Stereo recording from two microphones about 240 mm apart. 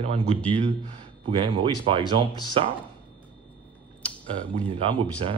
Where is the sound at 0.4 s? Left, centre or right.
Centre.